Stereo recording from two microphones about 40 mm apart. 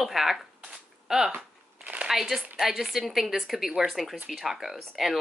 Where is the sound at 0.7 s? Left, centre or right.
Centre.